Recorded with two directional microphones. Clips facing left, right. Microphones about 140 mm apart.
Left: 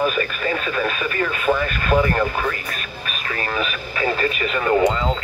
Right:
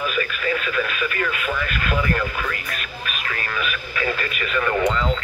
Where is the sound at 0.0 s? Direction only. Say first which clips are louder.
Left 3 dB; 40° left (ahead or behind).